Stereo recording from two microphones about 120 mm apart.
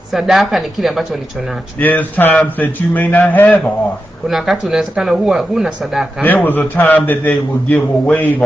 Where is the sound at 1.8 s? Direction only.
15° left (ahead or behind).